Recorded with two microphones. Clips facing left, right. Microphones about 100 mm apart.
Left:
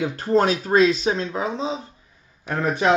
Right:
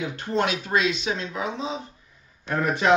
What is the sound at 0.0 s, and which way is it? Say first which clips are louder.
Speech: left 6 dB; 40° left (ahead or behind).